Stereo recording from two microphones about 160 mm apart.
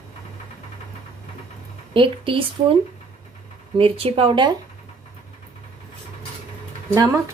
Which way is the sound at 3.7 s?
35° right (ahead or behind).